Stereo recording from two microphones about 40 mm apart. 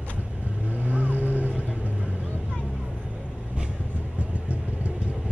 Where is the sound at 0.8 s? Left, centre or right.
Right.